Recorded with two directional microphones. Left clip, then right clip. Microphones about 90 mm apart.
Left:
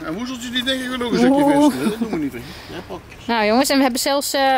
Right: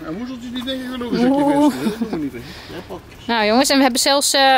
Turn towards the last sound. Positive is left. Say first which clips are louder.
# right 3 dB
turn(degrees=-5)  # may be behind; listen again after turning